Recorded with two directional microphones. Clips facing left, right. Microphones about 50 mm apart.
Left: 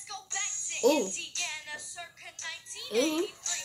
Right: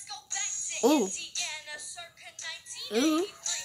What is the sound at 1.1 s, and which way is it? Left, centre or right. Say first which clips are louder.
Music: left 2 dB; left.